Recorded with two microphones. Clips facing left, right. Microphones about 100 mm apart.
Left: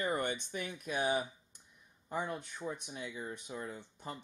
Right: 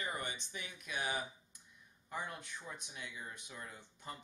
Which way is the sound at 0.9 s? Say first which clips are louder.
Left 6 dB; 30° left (ahead or behind).